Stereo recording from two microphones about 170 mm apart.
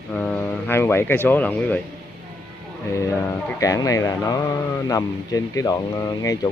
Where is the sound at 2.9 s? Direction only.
15° left (ahead or behind).